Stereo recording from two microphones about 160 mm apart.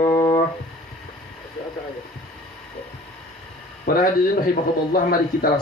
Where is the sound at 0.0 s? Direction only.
20° left (ahead or behind).